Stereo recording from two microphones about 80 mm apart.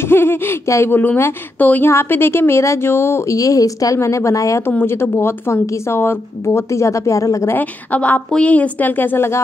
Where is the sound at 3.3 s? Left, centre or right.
Left.